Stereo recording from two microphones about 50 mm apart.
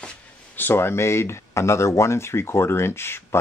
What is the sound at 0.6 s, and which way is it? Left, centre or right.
Speech, left.